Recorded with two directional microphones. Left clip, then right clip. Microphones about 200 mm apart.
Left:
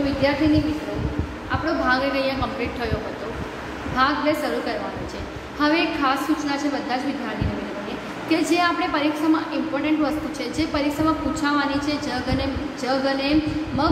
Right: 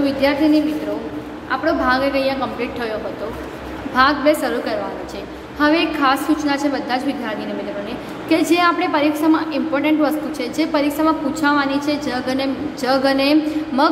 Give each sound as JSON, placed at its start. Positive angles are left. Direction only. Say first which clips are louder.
{"t": 0.2, "sound": "a woman's voice", "louder": "right 3 dB", "side_deg": -20}
{"t": 1.5, "sound": "a woman's voice", "louder": "right 4 dB", "side_deg": -15}
{"t": 3.9, "sound": "a woman's voice", "louder": "right 6 dB", "side_deg": -20}
{"t": 8.3, "sound": "a woman's voice", "louder": "right 5 dB", "side_deg": -15}